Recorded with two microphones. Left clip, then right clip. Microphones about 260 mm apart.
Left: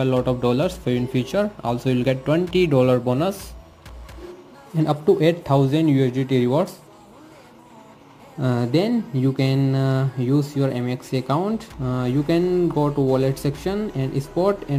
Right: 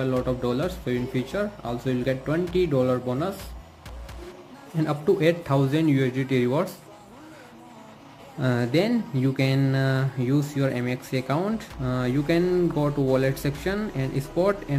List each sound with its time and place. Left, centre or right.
0.2 s speech: centre
4.7 s speech: centre
8.4 s speech: centre